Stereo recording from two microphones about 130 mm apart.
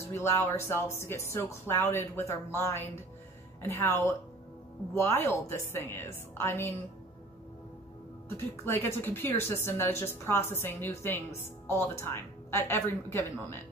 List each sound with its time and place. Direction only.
0.1 s speech: 20° left (ahead or behind)
8.6 s speech: 20° left (ahead or behind)